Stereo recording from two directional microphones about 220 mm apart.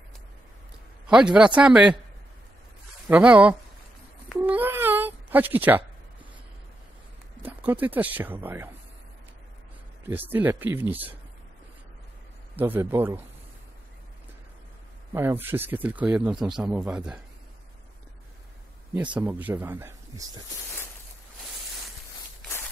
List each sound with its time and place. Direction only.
1.0 s a man's voice: 5° right (ahead or behind)
3.1 s speech: 5° right (ahead or behind)
4.4 s a sound: 10° right (ahead or behind)
7.4 s speech: 10° right (ahead or behind)
10.0 s speech: 10° right (ahead or behind)
12.5 s speech: 10° right (ahead or behind)
15.1 s a man's voice: 10° right (ahead or behind)
19.1 s speech: 10° right (ahead or behind)